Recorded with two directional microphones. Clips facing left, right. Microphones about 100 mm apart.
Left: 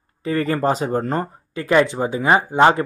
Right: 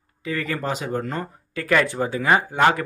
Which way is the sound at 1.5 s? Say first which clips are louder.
Left 4 dB; 25° left (ahead or behind).